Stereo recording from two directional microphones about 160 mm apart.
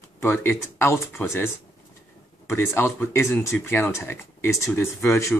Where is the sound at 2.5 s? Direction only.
15° left (ahead or behind).